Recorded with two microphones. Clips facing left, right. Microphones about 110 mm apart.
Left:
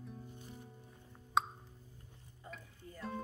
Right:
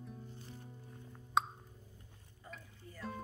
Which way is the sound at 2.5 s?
Centre (ahead or behind).